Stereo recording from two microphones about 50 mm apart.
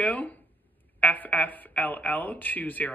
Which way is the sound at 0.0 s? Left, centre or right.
Left.